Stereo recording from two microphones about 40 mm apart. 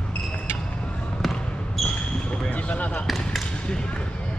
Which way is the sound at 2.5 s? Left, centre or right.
Left.